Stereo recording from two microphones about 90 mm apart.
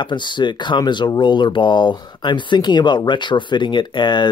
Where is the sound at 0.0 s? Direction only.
60° left (ahead or behind).